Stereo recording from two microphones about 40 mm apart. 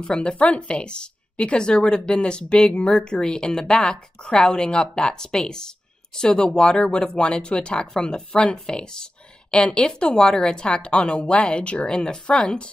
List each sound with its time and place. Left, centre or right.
0.0 s speech: left